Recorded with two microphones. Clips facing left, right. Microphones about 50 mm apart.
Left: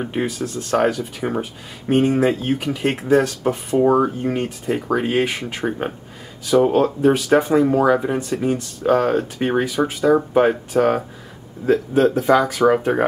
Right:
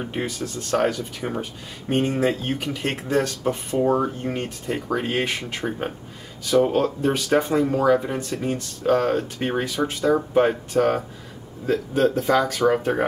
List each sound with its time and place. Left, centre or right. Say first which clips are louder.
0.0 s speech: left 5 dB; centre
3.8 s speech: left 5 dB; centre
4.2 s speech: left 5 dB; centre